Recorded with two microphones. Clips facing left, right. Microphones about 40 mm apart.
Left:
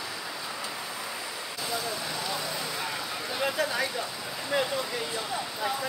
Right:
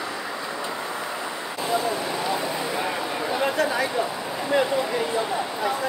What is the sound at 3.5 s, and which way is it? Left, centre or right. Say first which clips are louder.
Speech: right 5 dB; centre.